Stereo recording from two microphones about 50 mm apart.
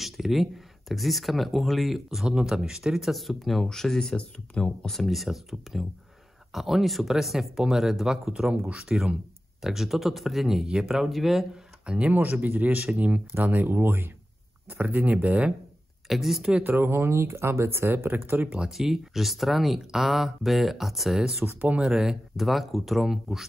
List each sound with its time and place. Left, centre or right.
0.0 s speech: centre
2.2 s speech: centre
4.8 s speech: centre
8.5 s speech: right
9.6 s speech: centre
11.8 s speech: right
12.1 s speech: right
13.3 s speech: right
14.7 s speech: right
16.1 s speech: centre
16.6 s speech: right
18.7 s speech: centre